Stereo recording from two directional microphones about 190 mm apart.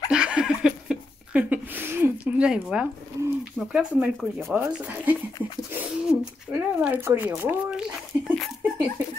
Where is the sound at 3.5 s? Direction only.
5° right (ahead or behind).